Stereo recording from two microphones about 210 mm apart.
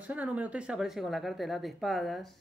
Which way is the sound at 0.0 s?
5° right (ahead or behind).